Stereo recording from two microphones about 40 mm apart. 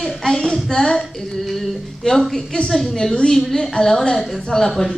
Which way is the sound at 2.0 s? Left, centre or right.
Centre.